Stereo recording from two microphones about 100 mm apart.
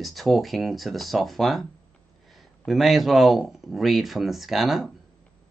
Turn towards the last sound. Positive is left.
turn(degrees=0)  # may be behind; listen again after turning